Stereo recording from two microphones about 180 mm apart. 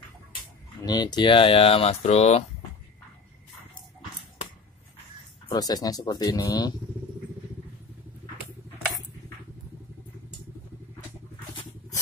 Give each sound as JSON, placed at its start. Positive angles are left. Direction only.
{"t": 0.8, "sound": "speech", "side_deg": 25}
{"t": 5.5, "sound": "speech", "side_deg": 20}